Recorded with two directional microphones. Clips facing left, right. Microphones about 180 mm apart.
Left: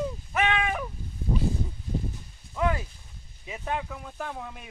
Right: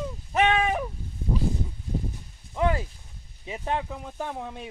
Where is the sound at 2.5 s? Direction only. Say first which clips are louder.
Right 2 dB; 25° right (ahead or behind).